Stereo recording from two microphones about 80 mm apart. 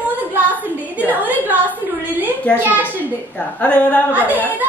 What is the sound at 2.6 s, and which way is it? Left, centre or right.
Speech, right.